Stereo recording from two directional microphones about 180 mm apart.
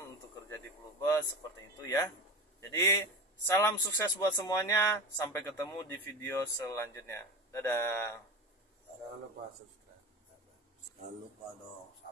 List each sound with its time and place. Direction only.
1.8 s speech: 15° left (ahead or behind)